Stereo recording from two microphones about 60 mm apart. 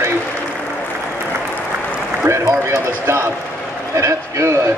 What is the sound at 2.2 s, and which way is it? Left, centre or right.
Speech, right.